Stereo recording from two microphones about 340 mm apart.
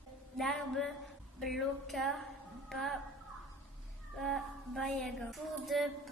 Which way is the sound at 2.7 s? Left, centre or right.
Centre.